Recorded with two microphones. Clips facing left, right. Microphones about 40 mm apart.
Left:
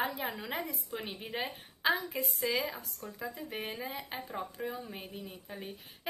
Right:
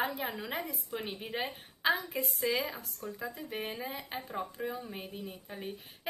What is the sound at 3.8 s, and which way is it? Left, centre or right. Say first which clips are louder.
A woman's voice: even; centre.